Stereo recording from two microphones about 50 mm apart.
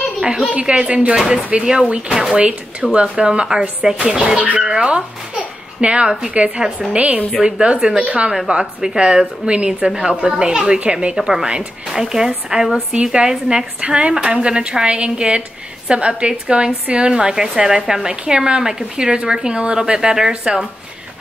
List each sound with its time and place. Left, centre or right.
0.2 s a woman's voice: centre
0.5 s speech: right
1.1 s a child's voice: centre
7.0 s a woman's voice: right
7.4 s speech: centre
11.1 s speech: centre
12.5 s speech: centre